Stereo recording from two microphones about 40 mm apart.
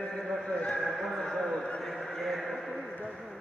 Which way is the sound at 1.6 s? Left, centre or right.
Left.